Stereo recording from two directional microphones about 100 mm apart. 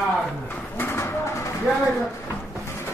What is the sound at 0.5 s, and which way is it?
Bird, 20° left (ahead or behind).